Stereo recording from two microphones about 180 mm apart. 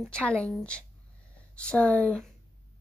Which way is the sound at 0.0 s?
5° left (ahead or behind).